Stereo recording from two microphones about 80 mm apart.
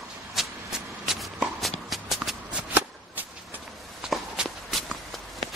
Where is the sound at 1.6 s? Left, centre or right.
Centre.